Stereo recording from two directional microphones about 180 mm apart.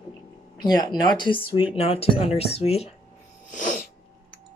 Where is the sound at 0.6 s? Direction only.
20° left (ahead or behind).